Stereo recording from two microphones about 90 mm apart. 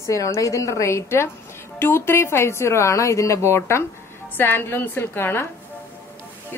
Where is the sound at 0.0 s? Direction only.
35° left (ahead or behind).